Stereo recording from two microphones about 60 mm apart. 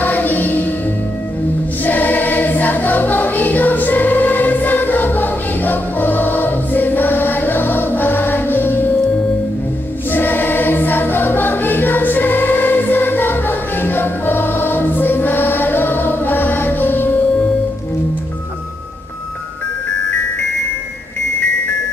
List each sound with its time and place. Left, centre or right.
0.0 s music: left
1.9 s music: left
10.1 s music: left